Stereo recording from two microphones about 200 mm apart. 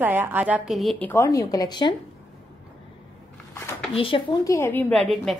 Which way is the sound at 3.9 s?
25° left (ahead or behind).